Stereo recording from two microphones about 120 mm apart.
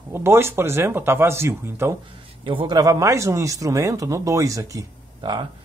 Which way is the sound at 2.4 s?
45° right (ahead or behind).